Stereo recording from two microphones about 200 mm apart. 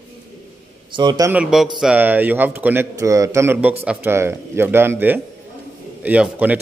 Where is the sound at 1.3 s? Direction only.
5° right (ahead or behind).